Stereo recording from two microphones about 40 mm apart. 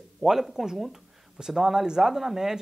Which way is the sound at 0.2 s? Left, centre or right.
Centre.